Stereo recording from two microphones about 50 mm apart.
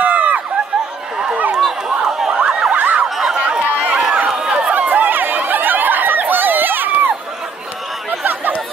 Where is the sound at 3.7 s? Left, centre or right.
Right.